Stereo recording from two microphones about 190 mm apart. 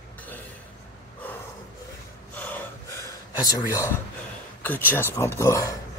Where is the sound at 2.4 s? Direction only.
10° left (ahead or behind).